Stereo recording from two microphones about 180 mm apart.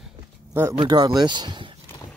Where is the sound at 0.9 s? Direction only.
20° right (ahead or behind).